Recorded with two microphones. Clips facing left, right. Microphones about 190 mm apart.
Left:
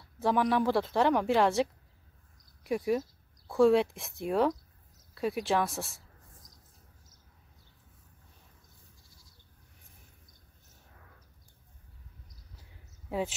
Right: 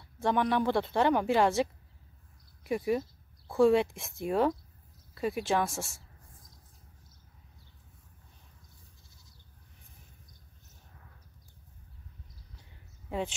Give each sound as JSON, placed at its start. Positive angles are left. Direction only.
{"t": 0.2, "sound": "a woman's voice", "side_deg": 0}